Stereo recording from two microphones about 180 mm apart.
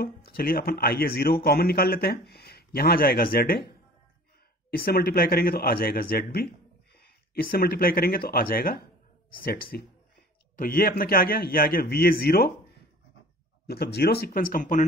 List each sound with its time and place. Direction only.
0.0 s a man's voice: 55° left (ahead or behind)
4.6 s a man's voice: 55° left (ahead or behind)
7.5 s a man's voice: 55° left (ahead or behind)
13.7 s a man's voice: 65° left (ahead or behind); by 14.9 s 50° left (ahead or behind)